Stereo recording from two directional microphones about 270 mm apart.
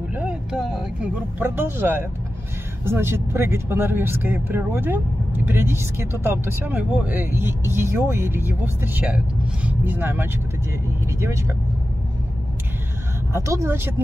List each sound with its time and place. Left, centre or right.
0.1 s vehicle: centre
1.4 s speech: centre
13.3 s speech: centre